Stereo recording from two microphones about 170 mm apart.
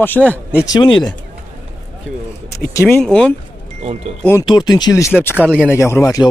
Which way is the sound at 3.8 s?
40° right (ahead or behind).